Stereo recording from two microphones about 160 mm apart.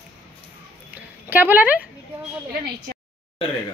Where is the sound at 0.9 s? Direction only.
10° right (ahead or behind).